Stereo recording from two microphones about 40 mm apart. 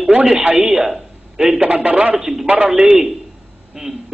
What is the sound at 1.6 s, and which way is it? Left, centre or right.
Speech, right.